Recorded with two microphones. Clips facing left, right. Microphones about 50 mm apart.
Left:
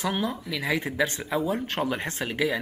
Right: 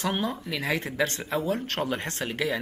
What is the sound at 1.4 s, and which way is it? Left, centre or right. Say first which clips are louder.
Speech: left 1 dB; centre.